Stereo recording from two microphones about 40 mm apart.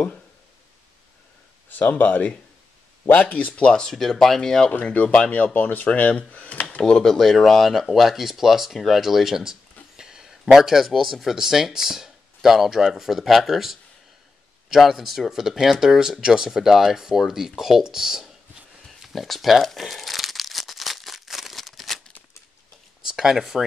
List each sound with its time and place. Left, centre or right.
1.7 s speech: left
3.1 s speech: left
3.8 s speech: centre
4.8 s speech: left
5.5 s speech: left
6.8 s speech: centre
7.1 s speech: centre
9.9 s a sound: centre
10.9 s speech: centre
18.9 s crumpling: centre
23.0 s speech: centre